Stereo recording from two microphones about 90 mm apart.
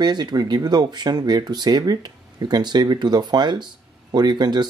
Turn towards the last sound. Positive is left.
turn(degrees=-55)  # may be behind; listen again after turning